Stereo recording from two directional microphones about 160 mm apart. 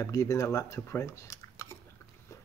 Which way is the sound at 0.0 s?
20° left (ahead or behind).